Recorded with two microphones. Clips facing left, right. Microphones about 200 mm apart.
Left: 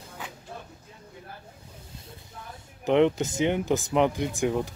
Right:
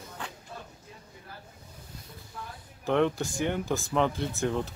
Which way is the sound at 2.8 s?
20° left (ahead or behind).